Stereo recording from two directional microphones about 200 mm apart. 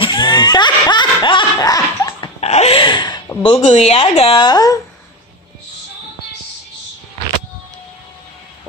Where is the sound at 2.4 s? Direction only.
30° left (ahead or behind).